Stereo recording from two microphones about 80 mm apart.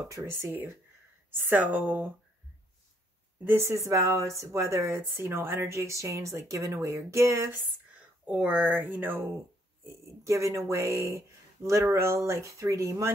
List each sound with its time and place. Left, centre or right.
0.1 s speech: right
3.4 s speech: right
8.3 s speech: centre
10.0 s speech: right